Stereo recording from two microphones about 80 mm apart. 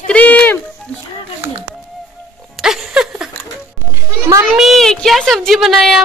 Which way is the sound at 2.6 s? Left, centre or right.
Centre.